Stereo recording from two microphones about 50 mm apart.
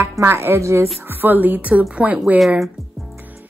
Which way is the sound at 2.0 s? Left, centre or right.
Right.